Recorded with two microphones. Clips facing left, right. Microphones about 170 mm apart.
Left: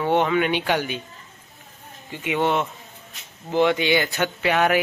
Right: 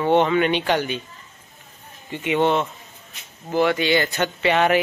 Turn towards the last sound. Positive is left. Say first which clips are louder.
# right 2 dB
turn(degrees=0)  # may be behind; listen again after turning